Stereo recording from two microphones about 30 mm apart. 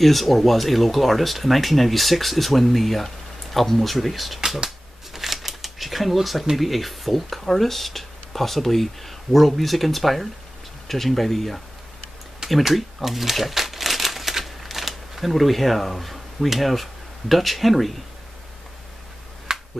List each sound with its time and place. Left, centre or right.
0.0 s speech: centre
4.6 s shuffling cards: centre
6.5 s speech: centre
12.6 s crumpling: centre
19.5 s finger snapping: centre